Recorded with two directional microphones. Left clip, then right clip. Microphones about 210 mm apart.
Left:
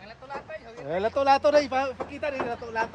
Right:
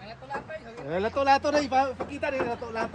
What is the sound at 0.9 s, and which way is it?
Speech, 50° left (ahead or behind).